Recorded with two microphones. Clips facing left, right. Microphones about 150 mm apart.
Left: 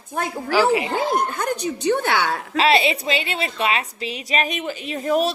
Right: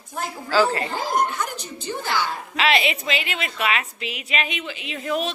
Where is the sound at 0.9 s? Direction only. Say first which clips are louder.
Left 2 dB; 60° left (ahead or behind).